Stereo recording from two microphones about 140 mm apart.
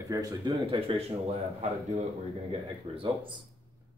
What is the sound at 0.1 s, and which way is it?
Speech, 25° right (ahead or behind).